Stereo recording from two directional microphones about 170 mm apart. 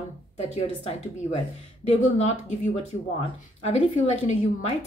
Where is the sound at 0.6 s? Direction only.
40° left (ahead or behind).